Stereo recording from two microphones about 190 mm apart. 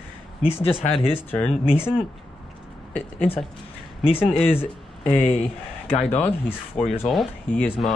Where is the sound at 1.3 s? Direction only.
10° left (ahead or behind).